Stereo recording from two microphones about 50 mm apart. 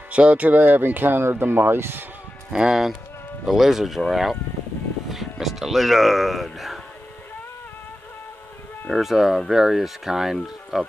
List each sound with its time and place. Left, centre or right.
0.1 s speech: right
2.5 s speech: centre
8.9 s speech: centre